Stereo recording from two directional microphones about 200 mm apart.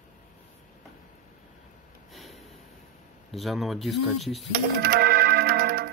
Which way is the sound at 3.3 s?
Centre (ahead or behind).